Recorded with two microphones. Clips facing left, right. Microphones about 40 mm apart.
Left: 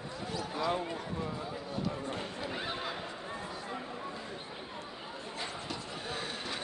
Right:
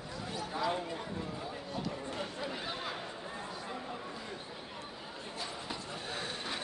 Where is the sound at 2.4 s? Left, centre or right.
Centre.